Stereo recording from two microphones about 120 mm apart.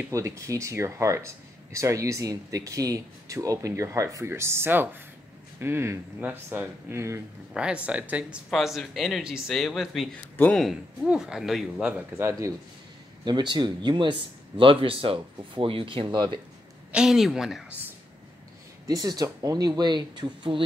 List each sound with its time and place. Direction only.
0.1 s speech: 25° right (ahead or behind)
7.5 s speech: 10° right (ahead or behind)
10.3 s speech: 15° left (ahead or behind)
10.6 s speech: centre (ahead or behind)
12.2 s speech: 25° right (ahead or behind)
13.2 s speech: 40° right (ahead or behind)
16.9 s speech: 5° right (ahead or behind)
18.9 s speech: 30° right (ahead or behind)